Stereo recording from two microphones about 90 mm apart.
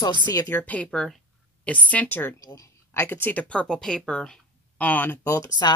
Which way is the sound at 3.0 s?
20° left (ahead or behind).